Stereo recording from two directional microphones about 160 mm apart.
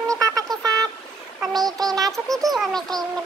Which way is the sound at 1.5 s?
25° right (ahead or behind).